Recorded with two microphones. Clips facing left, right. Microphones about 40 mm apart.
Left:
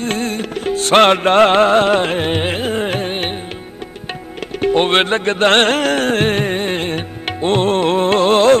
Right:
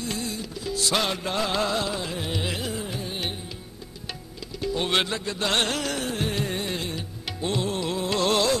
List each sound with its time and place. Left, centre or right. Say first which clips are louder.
0.0 s music: left 11 dB; left
2.8 s music: left 12 dB; left
4.6 s music: left 11 dB; left